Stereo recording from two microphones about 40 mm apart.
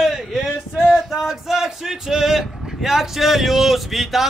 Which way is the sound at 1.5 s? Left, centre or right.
Centre.